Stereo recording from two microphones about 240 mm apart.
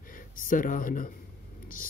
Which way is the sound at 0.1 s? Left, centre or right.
Left.